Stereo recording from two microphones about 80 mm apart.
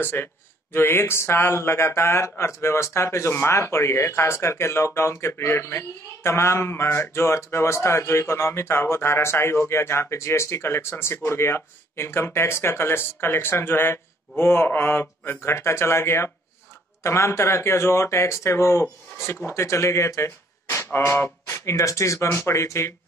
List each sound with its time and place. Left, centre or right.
0.0 s speech: left